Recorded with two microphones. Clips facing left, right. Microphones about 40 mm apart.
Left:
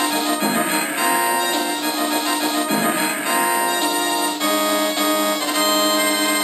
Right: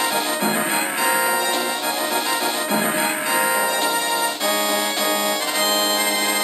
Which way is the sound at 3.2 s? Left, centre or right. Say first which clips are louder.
Left 2 dB; left.